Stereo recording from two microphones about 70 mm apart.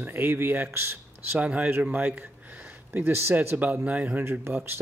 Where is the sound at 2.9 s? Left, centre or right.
Right.